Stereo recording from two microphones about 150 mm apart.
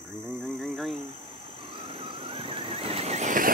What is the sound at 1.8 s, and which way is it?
Squeal, 35° right (ahead or behind).